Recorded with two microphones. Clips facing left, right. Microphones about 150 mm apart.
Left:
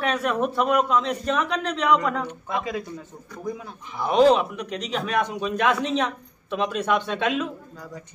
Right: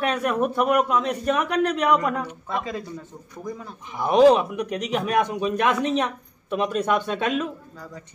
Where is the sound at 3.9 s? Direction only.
10° right (ahead or behind).